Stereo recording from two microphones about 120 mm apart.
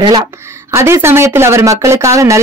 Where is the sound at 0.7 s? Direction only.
20° right (ahead or behind).